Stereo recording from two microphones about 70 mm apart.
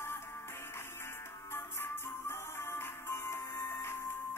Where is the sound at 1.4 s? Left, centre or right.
Left.